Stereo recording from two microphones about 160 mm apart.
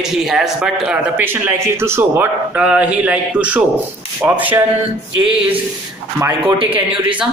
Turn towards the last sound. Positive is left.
turn(degrees=-35)  # may be behind; listen again after turning